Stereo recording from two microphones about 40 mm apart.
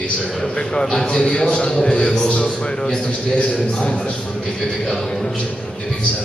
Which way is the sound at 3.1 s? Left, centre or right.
Left.